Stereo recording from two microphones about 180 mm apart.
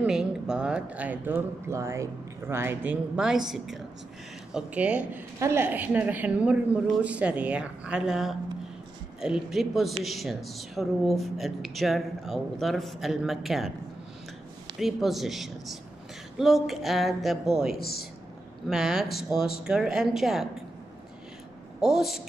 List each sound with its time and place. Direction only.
0.0 s a woman's voice: 5° right (ahead or behind)
14.8 s speech: centre (ahead or behind)
17.7 s speech: 60° left (ahead or behind)
18.7 s speech: centre (ahead or behind)
21.7 s speech: 5° right (ahead or behind)